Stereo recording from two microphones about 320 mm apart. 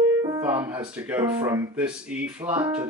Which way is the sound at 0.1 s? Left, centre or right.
Centre.